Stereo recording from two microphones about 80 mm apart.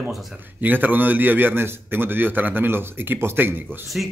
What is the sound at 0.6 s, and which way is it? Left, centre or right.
A man's voice, right.